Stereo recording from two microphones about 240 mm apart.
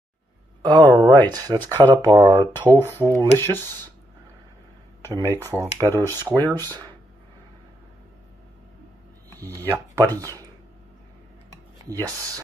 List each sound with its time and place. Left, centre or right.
0.6 s speech: centre
3.3 s speech: centre
5.0 s speech: centre
6.6 s speech: centre
9.3 s speech: centre
9.7 s speech: centre